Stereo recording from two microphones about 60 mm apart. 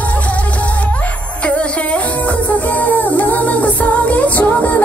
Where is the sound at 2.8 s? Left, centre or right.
Left.